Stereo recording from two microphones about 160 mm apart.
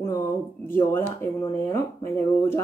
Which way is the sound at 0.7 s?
15° left (ahead or behind).